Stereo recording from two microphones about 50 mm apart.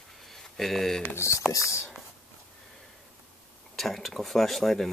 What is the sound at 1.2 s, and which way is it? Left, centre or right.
Speech, left.